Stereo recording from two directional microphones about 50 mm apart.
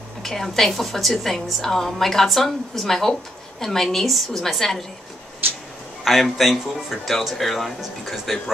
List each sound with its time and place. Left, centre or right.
0.2 s speech: centre
5.4 s a sound: right
6.0 s speech: centre